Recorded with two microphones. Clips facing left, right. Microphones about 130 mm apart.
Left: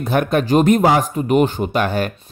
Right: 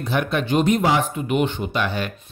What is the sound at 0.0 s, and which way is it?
Speech, 50° left (ahead or behind).